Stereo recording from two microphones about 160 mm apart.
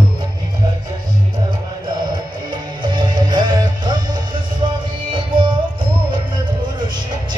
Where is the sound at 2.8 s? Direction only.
30° right (ahead or behind).